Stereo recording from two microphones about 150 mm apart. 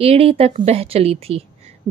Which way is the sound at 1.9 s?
25° right (ahead or behind).